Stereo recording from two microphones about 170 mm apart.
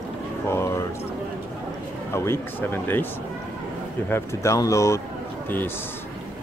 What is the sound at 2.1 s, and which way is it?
Speech, 15° left (ahead or behind).